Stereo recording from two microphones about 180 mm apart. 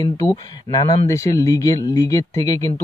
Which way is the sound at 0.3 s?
20° left (ahead or behind).